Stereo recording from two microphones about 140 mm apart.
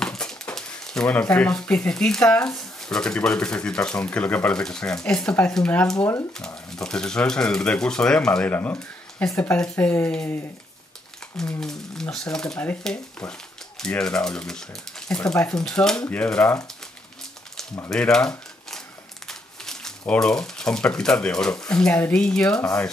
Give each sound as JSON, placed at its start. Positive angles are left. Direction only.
{"t": 0.0, "sound": "a sound", "side_deg": 5}
{"t": 1.3, "sound": "speech", "side_deg": 5}
{"t": 5.9, "sound": "speech", "side_deg": 20}
{"t": 6.3, "sound": "speech", "side_deg": 5}
{"t": 17.8, "sound": "speech", "side_deg": 5}